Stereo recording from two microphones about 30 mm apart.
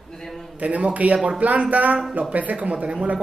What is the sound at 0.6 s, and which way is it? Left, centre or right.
Speech, right.